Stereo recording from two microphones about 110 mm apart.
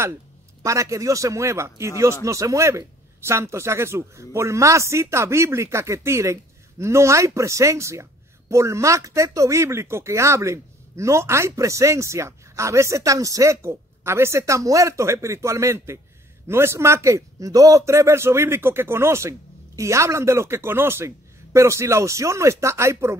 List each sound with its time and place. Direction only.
0.6 s a man's voice: 30° right (ahead or behind)